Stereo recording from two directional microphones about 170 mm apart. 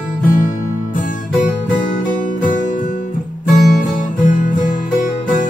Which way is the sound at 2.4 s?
50° left (ahead or behind).